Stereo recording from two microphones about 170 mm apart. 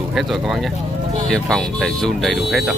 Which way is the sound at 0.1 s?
Centre (ahead or behind).